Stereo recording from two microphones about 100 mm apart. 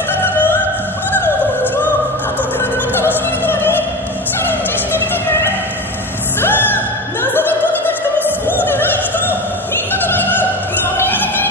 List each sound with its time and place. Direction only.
0.2 s music: 20° left (ahead or behind)
3.0 s opera: 20° left (ahead or behind)
4.4 s music: 20° left (ahead or behind)
9.9 s opera: 20° left (ahead or behind)